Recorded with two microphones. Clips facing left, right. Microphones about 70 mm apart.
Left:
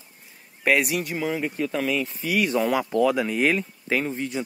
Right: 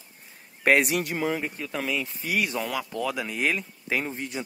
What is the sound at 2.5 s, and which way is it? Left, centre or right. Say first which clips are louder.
Speech: left 7 dB; centre.